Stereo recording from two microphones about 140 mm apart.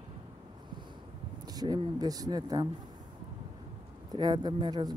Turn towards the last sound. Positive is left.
turn(degrees=-30)  # may be behind; listen again after turning